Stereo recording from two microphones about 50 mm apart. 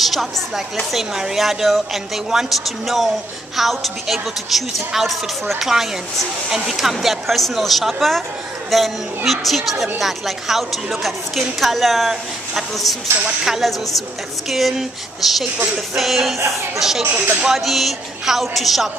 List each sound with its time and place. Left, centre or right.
0.0 s a woman's voice: centre
16.3 s speech: right
17.5 s a woman's voice: centre